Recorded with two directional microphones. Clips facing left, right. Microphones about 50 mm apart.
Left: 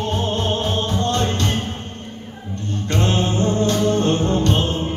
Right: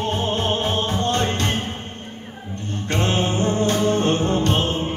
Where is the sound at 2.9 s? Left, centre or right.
Right.